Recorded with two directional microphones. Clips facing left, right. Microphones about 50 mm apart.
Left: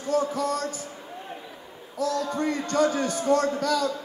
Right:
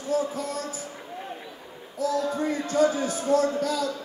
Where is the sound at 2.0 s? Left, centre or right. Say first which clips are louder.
Right 1 dB; left.